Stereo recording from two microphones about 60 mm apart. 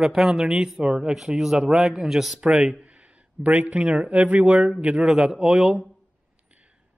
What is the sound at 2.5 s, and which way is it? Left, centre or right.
Speech, right.